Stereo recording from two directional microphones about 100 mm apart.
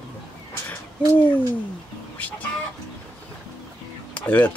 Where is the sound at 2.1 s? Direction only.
15° left (ahead or behind).